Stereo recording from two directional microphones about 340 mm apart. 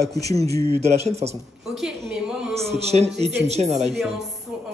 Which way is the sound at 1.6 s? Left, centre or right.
Centre.